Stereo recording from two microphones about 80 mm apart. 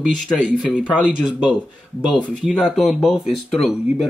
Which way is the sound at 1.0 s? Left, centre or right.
Centre.